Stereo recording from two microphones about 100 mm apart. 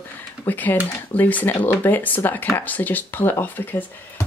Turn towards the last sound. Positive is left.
turn(degrees=20)  # may be behind; listen again after turning